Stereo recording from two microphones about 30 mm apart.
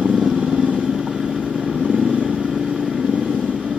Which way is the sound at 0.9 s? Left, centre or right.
Centre.